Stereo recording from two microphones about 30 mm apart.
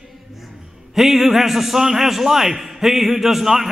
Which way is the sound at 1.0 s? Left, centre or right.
Centre.